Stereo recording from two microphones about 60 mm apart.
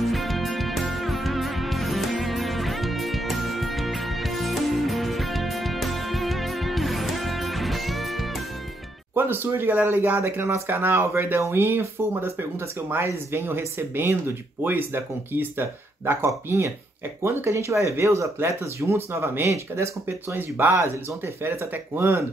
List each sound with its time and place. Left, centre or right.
0.1 s music: centre
9.1 s speech: right
16.4 s speech: right
20.3 s speech: right